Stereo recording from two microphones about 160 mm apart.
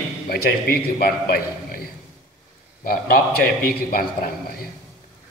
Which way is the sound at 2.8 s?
65° left (ahead or behind).